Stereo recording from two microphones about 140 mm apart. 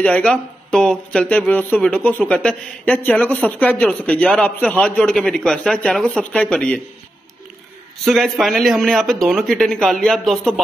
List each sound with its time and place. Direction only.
0.0 s speech: 10° left (ahead or behind)
8.0 s speech: centre (ahead or behind)